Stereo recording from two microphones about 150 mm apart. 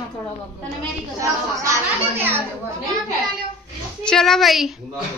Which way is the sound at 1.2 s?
20° right (ahead or behind).